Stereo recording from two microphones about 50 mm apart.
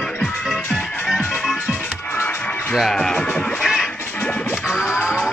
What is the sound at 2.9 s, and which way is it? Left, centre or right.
Music, centre.